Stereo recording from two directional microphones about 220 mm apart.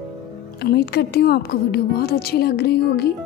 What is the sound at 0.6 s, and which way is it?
A woman's voice, 45° left (ahead or behind).